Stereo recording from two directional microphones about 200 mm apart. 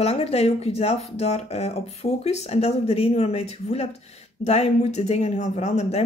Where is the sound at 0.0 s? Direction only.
30° left (ahead or behind).